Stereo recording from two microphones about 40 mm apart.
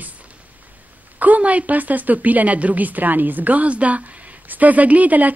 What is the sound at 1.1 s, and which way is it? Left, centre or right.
A woman's voice, right.